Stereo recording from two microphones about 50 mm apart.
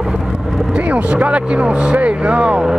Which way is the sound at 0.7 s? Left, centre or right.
Right.